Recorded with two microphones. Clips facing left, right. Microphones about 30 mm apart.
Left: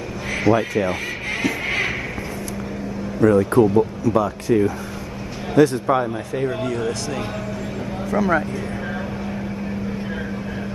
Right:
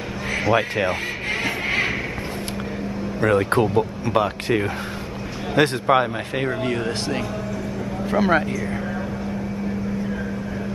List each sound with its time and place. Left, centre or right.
0.6 s speech: right
1.7 s a sound: centre
3.2 s speech: right
6.6 s speech: right